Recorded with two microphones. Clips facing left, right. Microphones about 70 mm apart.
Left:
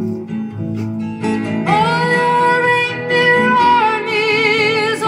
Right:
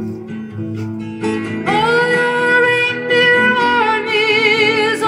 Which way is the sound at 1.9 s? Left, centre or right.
Left.